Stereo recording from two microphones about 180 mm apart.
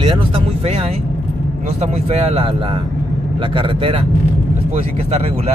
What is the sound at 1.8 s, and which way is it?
Speech, 35° right (ahead or behind).